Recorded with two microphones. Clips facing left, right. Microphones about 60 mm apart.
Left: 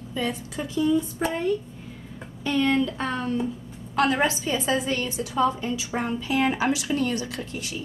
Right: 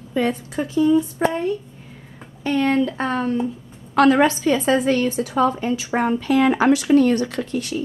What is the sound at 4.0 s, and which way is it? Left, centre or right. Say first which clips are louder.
A woman's voice: right 7 dB; right.